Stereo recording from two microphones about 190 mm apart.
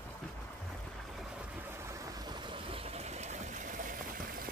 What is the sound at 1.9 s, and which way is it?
Vehicle, 20° right (ahead or behind).